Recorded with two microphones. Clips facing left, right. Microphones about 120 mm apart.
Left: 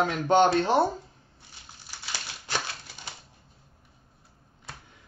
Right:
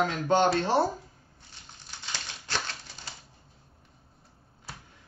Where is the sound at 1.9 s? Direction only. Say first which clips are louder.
Left 1 dB; 5° left (ahead or behind).